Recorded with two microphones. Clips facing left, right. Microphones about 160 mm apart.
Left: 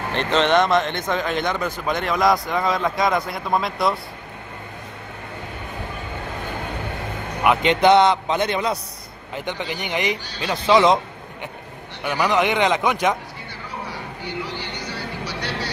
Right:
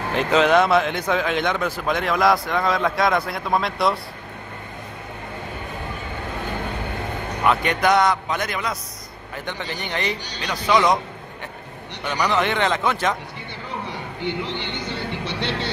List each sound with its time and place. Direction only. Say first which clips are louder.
0.1 s speech: right 2 dB; 5° right (ahead or behind)
7.4 s a man's voice: left 4 dB; 20° left (ahead or behind)
9.3 s a man's voice: left 3 dB; 15° left (ahead or behind)
12.0 s a man's voice: left 2 dB; 15° left (ahead or behind)
13.8 s speech: right 4 dB; 25° right (ahead or behind)